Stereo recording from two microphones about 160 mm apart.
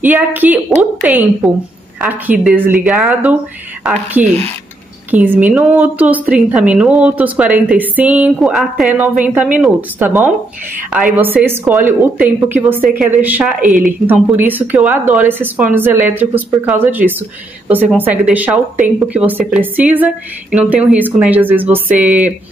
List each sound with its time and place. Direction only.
0.0 s a woman's voice: 10° right (ahead or behind)
5.1 s a woman's voice: 10° right (ahead or behind)
13.7 s a woman's voice: 55° right (ahead or behind)
14.0 s a woman's voice: 10° right (ahead or behind)